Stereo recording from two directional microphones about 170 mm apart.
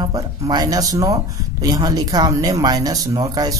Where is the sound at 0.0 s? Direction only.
25° right (ahead or behind).